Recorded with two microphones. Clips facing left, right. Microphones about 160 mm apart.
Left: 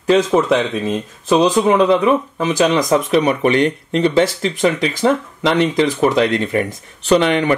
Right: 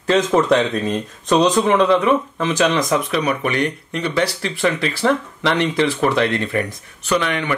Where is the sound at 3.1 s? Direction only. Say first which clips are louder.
Left 6 dB; 25° left (ahead or behind).